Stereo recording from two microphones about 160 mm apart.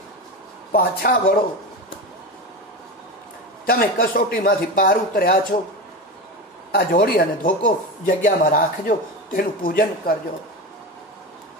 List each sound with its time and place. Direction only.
0.7 s speech: 70° left (ahead or behind)
3.6 s speech: 65° left (ahead or behind)
6.7 s speech: 70° left (ahead or behind)